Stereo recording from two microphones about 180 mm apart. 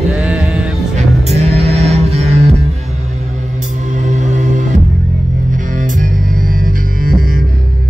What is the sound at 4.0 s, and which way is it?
Music, 40° right (ahead or behind).